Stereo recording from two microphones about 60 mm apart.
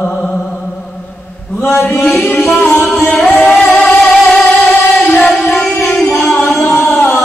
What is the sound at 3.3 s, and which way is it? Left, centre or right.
Music, left.